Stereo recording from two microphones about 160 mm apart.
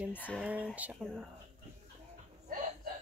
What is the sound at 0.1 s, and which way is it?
Speech, 10° left (ahead or behind).